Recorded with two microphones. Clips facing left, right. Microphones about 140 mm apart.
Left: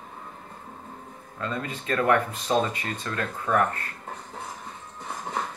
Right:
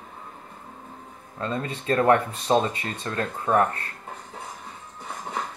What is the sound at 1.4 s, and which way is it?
Speech, 30° right (ahead or behind).